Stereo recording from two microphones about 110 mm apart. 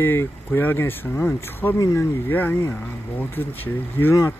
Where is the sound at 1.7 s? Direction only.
30° left (ahead or behind).